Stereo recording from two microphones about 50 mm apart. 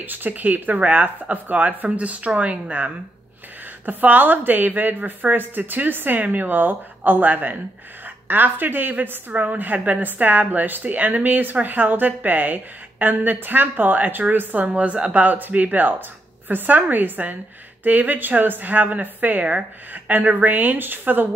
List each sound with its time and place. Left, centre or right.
0.0 s a woman's voice: right
14.7 s speech: right
15.2 s a woman's voice: right